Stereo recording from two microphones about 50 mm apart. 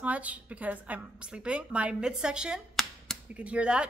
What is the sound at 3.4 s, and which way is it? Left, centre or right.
Speech, right.